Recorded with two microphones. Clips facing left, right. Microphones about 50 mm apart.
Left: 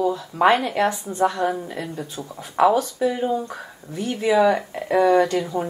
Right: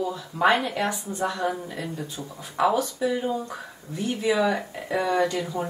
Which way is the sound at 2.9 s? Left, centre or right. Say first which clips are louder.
Left 4 dB; centre.